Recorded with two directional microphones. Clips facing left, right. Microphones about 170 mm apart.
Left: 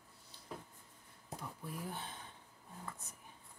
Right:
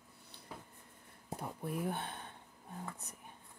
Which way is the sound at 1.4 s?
60° right (ahead or behind).